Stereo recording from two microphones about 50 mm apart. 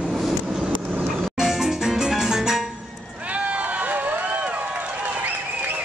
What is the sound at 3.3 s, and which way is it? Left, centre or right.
Run, right.